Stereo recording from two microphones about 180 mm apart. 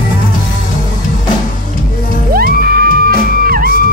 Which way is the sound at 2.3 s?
55° right (ahead or behind).